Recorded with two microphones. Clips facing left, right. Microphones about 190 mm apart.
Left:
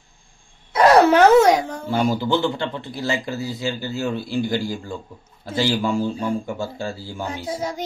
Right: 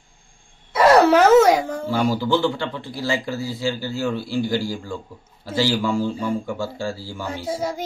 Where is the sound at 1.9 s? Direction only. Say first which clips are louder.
Even; 20° left (ahead or behind).